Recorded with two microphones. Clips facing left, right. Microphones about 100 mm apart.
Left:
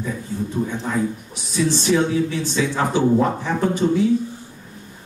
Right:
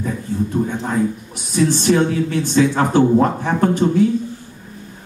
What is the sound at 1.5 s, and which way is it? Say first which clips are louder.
Speech: right 3 dB; 55° right (ahead or behind).